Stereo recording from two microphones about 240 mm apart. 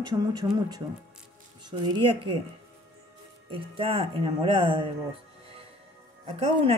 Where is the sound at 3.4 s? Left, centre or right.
Right.